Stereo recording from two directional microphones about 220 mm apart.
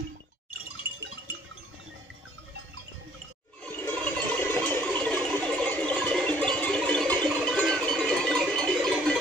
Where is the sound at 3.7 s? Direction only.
10° left (ahead or behind).